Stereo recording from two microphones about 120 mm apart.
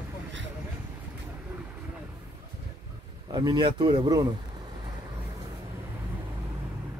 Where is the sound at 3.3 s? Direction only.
40° right (ahead or behind).